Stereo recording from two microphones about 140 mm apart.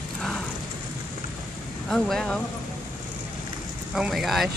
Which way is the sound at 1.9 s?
5° left (ahead or behind).